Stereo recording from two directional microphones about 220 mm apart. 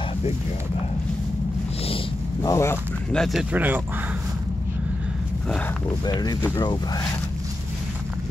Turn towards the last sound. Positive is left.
turn(degrees=15)  # may be behind; listen again after turning